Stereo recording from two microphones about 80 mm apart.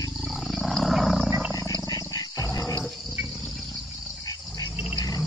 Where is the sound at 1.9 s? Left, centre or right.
Left.